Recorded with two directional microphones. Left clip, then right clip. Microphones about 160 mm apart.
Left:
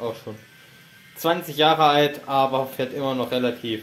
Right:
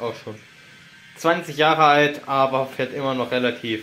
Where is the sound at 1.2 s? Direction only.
Centre (ahead or behind).